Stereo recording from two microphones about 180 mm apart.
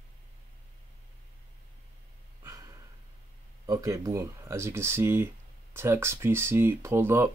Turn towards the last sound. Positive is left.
turn(degrees=-15)  # may be behind; listen again after turning